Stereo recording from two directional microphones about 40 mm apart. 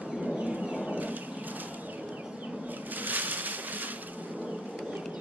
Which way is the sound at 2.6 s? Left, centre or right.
Right.